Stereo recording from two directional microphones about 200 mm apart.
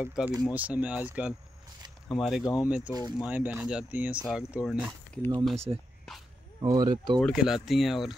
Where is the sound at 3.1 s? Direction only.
5° right (ahead or behind).